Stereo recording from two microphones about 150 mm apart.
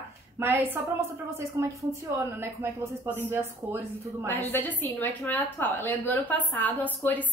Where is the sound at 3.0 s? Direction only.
15° right (ahead or behind).